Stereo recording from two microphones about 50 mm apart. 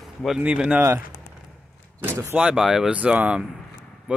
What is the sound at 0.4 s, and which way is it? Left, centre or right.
Speech, right.